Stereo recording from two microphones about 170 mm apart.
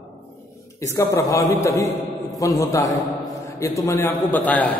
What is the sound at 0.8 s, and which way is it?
A man's voice, 15° left (ahead or behind).